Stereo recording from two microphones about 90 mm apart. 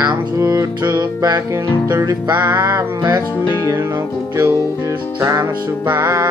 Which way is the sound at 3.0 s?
55° right (ahead or behind).